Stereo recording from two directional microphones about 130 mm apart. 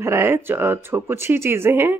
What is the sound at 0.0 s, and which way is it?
Speech, 20° right (ahead or behind).